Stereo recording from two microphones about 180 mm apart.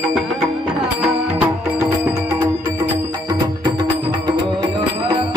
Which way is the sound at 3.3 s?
25° right (ahead or behind).